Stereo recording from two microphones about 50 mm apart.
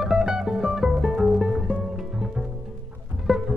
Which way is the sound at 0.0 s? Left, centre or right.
Centre.